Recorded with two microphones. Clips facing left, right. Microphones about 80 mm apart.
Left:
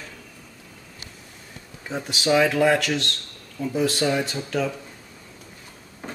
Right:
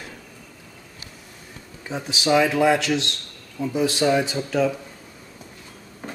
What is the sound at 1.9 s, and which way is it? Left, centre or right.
Speech, centre.